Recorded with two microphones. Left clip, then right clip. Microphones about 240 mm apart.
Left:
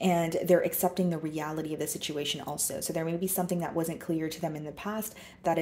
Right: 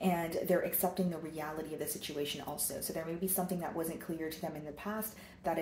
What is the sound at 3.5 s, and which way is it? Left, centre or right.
Speech, left.